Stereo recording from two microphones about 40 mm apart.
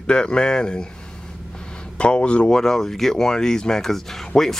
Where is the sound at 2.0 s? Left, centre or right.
Left.